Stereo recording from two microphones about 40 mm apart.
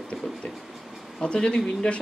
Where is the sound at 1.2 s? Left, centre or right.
Left.